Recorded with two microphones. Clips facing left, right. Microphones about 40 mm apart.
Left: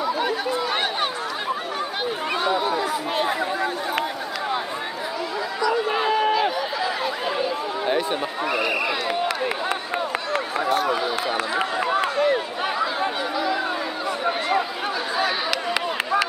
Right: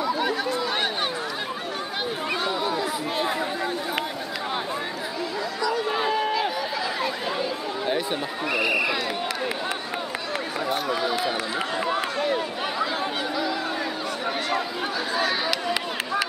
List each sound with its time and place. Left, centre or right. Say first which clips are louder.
0.0 s chatter: left 1 dB; centre
2.5 s chatter: left 3 dB; centre
5.7 s a sound: left 3 dB; centre
10.9 s speech: left 2 dB; centre
15.1 s speech: left 1 dB; centre